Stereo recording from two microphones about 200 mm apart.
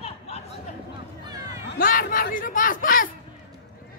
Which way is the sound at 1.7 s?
45° left (ahead or behind).